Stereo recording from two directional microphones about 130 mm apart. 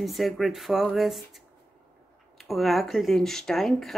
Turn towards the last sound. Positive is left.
turn(degrees=0)  # may be behind; listen again after turning